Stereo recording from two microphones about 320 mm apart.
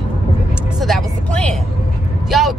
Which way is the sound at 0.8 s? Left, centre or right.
Centre.